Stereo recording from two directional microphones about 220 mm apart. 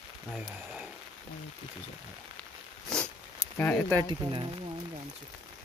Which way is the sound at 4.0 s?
20° right (ahead or behind).